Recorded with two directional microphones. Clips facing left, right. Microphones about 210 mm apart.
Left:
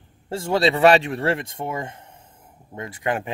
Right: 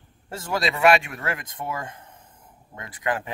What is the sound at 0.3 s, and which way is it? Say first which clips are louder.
Speech: left 7 dB; 30° left (ahead or behind).